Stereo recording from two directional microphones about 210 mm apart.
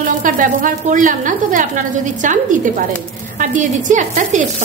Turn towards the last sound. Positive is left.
turn(degrees=-35)  # may be behind; listen again after turning